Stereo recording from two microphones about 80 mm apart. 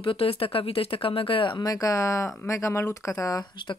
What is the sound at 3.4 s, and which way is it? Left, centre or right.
Speech, left.